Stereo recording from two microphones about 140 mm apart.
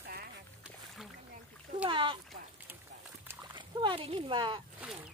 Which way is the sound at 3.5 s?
35° right (ahead or behind).